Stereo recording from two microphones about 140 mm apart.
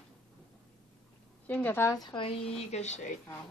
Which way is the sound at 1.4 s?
10° left (ahead or behind).